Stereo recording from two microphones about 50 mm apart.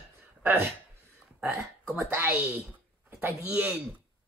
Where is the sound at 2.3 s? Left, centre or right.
Right.